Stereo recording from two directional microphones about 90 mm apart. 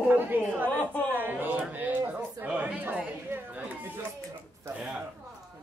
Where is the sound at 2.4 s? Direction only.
15° right (ahead or behind).